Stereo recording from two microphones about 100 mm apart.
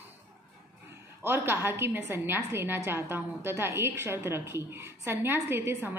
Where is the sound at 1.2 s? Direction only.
25° right (ahead or behind).